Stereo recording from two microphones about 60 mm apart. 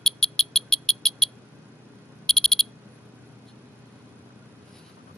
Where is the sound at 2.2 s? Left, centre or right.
Centre.